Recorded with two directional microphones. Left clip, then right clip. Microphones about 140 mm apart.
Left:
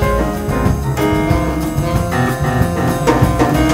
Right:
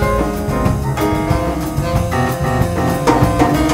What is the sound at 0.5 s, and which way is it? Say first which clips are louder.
Music: even; 30° right (ahead or behind).